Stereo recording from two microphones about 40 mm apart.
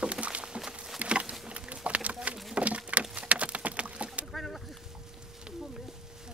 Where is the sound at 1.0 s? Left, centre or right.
Right.